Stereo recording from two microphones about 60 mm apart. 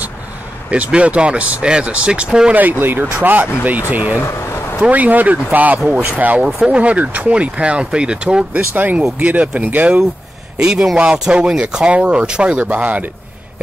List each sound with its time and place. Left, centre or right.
0.7 s speech: right
2.5 s speech: right
6.4 s speech: centre
8.5 s speech: right
10.6 s a man's voice: centre; by 13.1 s right